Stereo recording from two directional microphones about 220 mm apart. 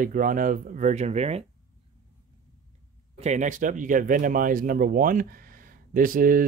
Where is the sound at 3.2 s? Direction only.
30° right (ahead or behind).